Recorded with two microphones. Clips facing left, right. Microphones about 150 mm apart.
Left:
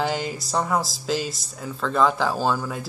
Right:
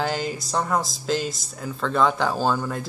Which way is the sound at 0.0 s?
Centre (ahead or behind).